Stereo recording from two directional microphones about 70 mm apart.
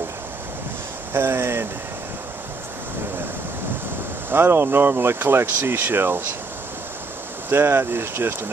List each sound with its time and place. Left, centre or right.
1.1 s speech: right
4.3 s speech: right
7.4 s speech: right